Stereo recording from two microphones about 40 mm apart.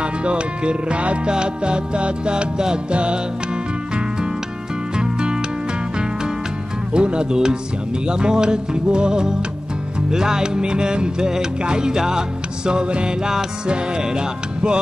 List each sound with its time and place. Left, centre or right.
0.0 s music: right
2.9 s music: right
4.9 s music: right
6.9 s music: right
13.2 s music: centre
13.7 s music: right